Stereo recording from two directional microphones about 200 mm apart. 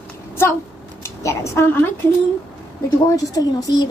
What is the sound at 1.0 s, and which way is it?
Speech, 15° left (ahead or behind).